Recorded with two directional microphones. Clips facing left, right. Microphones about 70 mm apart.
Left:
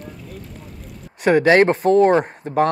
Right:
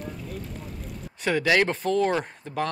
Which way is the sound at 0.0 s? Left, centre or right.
Centre.